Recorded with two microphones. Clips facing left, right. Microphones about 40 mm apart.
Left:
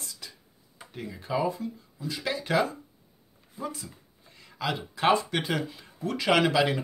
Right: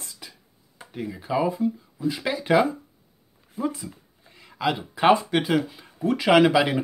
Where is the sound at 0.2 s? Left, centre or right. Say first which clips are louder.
Right 2 dB; centre.